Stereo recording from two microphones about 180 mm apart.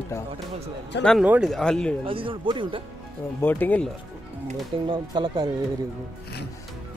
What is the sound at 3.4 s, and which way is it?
Speech, 10° left (ahead or behind).